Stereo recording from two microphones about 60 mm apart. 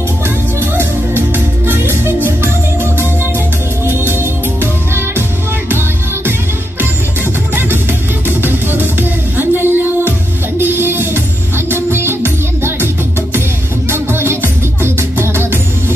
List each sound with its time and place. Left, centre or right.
0.7 s music: right
4.1 s music: right
8.3 s music: right